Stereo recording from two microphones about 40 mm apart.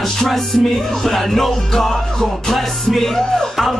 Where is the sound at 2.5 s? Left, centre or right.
Centre.